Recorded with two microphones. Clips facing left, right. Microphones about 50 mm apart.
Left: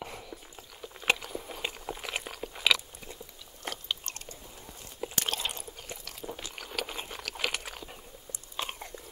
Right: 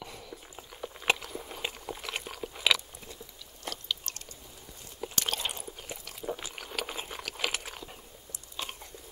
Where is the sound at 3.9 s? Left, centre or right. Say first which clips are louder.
Even; left.